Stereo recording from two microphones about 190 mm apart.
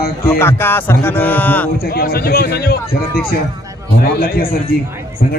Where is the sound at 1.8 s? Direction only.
55° left (ahead or behind).